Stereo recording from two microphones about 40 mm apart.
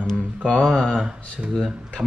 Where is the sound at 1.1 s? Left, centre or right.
Centre.